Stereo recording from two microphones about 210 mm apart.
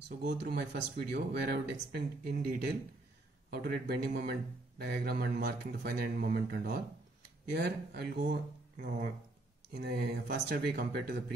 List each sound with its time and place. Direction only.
0.2 s speech: 50° right (ahead or behind)